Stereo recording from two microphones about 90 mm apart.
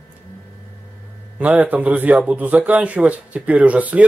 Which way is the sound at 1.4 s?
15° right (ahead or behind).